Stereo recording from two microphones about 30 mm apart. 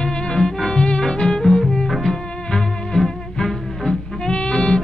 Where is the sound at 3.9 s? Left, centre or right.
Left.